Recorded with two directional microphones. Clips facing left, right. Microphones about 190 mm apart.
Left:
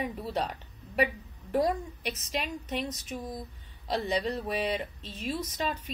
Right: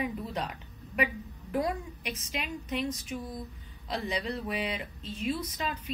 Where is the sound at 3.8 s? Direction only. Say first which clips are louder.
Left 4 dB; 35° left (ahead or behind).